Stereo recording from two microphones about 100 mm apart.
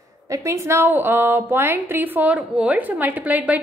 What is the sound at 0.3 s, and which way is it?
A woman's voice, 30° right (ahead or behind).